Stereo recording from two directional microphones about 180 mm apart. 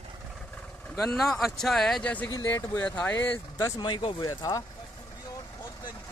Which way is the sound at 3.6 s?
25° left (ahead or behind).